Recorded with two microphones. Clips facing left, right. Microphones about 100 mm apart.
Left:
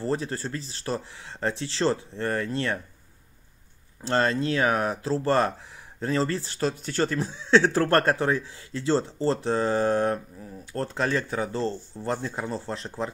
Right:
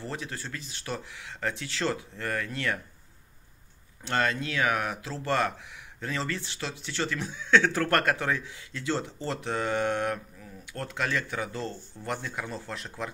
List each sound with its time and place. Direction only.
0.0 s speech: 35° left (ahead or behind)
4.0 s speech: 30° left (ahead or behind)